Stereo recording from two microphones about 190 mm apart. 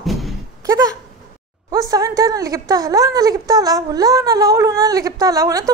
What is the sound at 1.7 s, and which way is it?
A woman's voice, 15° right (ahead or behind).